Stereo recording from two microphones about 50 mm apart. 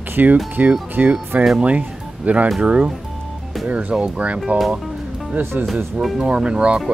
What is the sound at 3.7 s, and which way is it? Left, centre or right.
Speech, right.